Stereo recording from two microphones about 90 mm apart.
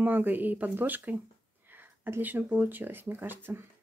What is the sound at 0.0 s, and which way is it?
A woman's voice, 20° right (ahead or behind).